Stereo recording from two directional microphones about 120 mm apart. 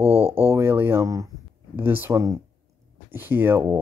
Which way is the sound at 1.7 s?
15° right (ahead or behind).